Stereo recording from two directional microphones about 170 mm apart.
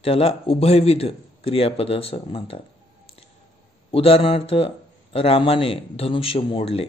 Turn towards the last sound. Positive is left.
turn(degrees=35)  # may be behind; listen again after turning